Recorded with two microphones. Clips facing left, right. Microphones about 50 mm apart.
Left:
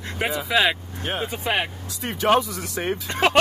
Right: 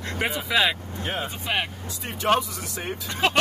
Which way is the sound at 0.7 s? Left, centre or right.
Centre.